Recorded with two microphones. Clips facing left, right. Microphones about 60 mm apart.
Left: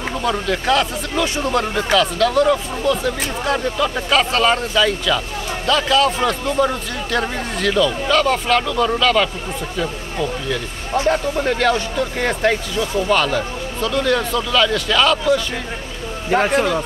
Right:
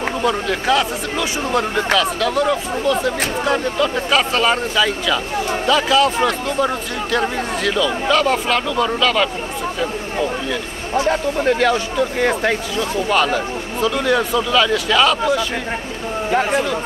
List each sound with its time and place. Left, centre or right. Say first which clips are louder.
0.2 s speech: even; centre
11.1 s speech: right 1 dB; centre